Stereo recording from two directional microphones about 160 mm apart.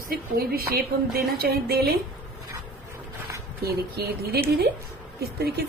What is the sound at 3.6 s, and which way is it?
Speech, 75° right (ahead or behind).